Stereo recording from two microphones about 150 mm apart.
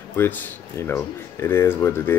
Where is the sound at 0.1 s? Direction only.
10° left (ahead or behind).